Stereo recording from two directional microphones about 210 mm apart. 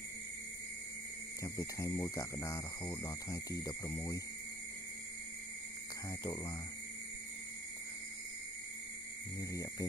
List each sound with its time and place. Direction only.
1.4 s speech: 15° left (ahead or behind)
6.2 s speech: 20° left (ahead or behind)
9.4 s speech: 15° left (ahead or behind)